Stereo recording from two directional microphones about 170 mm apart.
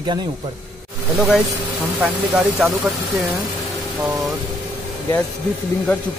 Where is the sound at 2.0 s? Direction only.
Centre (ahead or behind).